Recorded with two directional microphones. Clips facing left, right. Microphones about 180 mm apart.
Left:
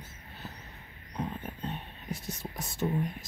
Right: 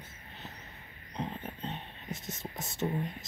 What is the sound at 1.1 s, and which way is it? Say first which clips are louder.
Speech: left 2 dB; 25° right (ahead or behind).